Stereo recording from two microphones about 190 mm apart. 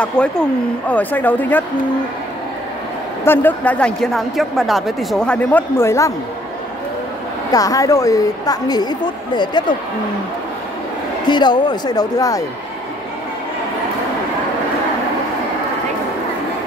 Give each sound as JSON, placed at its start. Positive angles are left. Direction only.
{"t": 0.0, "sound": "speech", "side_deg": 5}
{"t": 3.3, "sound": "speech", "side_deg": 10}
{"t": 7.5, "sound": "a woman's voice", "side_deg": 20}
{"t": 11.2, "sound": "a woman's voice", "side_deg": 25}